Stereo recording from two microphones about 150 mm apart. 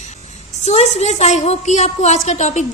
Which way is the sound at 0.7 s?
45° left (ahead or behind).